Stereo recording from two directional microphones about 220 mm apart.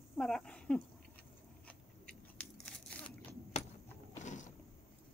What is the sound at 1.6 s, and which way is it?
Scissors, 5° left (ahead or behind).